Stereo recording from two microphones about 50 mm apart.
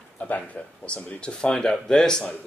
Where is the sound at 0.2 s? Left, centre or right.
Left.